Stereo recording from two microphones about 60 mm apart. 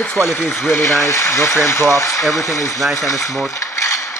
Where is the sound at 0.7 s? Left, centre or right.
Left.